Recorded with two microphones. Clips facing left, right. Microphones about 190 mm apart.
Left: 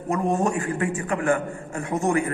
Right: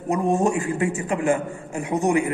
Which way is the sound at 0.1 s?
20° right (ahead or behind).